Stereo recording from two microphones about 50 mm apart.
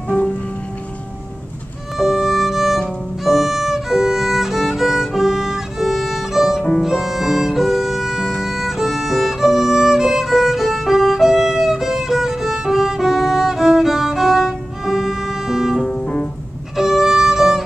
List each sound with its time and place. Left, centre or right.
2.0 s music: centre
3.3 s violin: centre
6.8 s music: centre
15.9 s music: centre
16.7 s violin: centre